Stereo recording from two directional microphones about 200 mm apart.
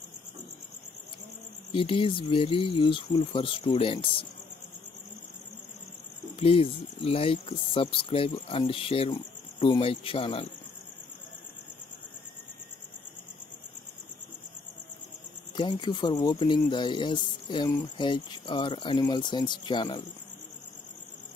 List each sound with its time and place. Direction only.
1.7 s speech: 25° left (ahead or behind)
6.4 s speech: 30° left (ahead or behind)
15.5 s speech: 20° left (ahead or behind)